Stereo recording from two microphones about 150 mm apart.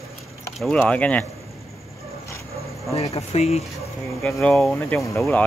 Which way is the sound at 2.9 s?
45° left (ahead or behind).